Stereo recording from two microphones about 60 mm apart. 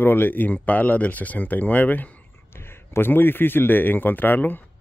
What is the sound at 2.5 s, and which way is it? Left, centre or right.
A man's voice, left.